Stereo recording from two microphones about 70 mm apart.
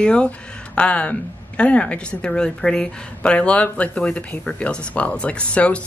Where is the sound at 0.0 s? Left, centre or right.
Centre.